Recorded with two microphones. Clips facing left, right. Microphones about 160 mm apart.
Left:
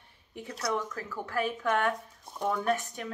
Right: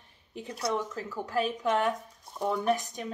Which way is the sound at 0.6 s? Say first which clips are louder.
Right 1 dB; 20° right (ahead or behind).